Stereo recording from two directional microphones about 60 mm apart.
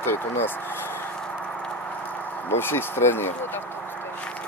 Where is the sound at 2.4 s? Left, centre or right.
Left.